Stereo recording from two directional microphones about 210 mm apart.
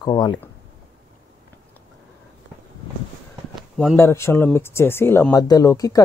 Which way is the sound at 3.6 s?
Centre (ahead or behind).